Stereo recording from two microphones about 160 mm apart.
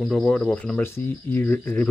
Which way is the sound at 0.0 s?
5° left (ahead or behind).